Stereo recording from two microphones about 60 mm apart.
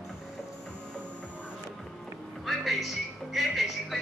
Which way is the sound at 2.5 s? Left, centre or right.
Centre.